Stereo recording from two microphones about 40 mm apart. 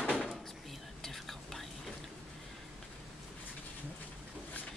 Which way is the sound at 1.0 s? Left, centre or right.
Centre.